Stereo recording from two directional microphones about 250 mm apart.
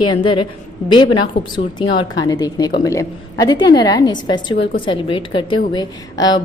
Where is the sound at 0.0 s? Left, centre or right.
Centre.